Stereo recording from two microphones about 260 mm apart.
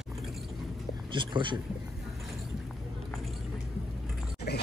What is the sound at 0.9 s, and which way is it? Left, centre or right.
Speech, centre.